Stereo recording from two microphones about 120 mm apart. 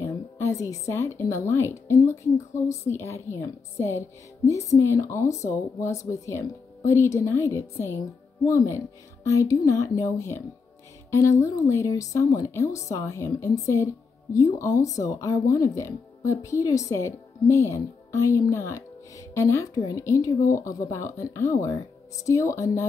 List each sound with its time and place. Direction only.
0.0 s a sound: 25° left (ahead or behind)
0.7 s speech: 25° left (ahead or behind)
4.5 s speech: 25° left (ahead or behind)